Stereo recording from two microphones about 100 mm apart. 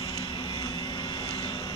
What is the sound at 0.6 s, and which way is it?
Vehicle, 50° left (ahead or behind).